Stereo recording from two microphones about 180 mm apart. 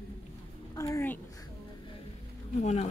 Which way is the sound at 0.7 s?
15° left (ahead or behind).